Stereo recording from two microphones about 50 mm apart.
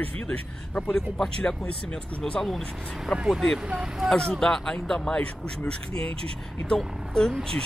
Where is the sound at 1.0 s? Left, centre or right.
Centre.